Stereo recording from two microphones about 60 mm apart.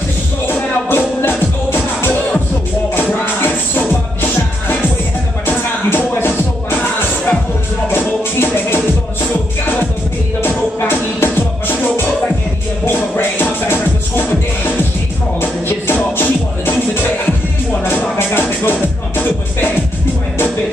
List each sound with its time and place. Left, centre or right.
0.5 s music: left
5.9 s music: left
10.9 s music: left
12.8 s music: left
18.1 s music: left